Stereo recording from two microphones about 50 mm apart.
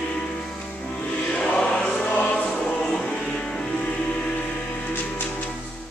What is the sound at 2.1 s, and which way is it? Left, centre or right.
Music, left.